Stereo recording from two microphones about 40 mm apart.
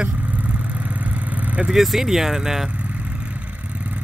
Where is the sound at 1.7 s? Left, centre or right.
Centre.